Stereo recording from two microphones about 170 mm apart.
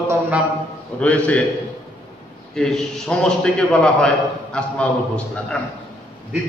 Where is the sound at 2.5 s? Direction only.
Centre (ahead or behind).